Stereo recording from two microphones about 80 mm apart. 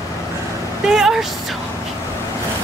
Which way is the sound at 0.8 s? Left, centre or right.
Centre.